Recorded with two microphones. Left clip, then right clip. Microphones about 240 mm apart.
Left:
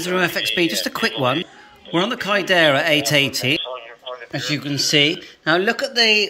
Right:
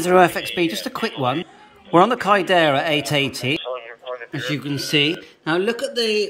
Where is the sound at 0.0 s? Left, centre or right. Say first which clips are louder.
Right 5 dB; centre.